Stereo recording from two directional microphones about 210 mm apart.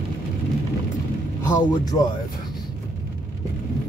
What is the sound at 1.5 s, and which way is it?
Speech, 15° left (ahead or behind).